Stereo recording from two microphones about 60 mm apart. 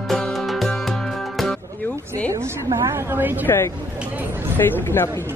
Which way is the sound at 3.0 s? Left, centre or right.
Right.